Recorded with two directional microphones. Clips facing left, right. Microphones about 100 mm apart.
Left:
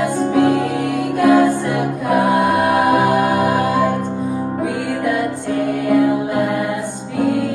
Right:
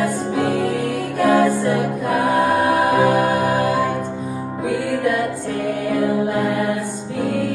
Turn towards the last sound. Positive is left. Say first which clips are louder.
# left 1 dB
turn(degrees=15)  # may be behind; listen again after turning